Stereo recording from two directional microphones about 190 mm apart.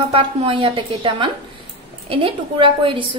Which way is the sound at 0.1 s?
30° right (ahead or behind).